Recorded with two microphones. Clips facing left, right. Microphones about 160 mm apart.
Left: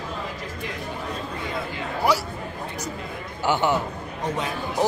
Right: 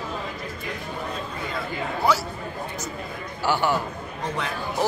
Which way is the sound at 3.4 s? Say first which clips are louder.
Left 1 dB; 20° left (ahead or behind).